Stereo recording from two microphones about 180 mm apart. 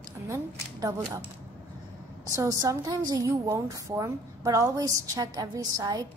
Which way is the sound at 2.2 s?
15° right (ahead or behind).